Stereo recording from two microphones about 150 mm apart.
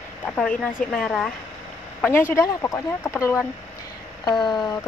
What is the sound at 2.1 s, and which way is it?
Speech, 15° left (ahead or behind).